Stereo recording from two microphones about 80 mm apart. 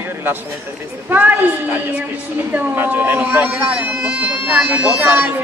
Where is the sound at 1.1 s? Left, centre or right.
Right.